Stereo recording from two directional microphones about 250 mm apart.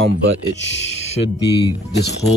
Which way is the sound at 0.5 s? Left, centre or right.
Left.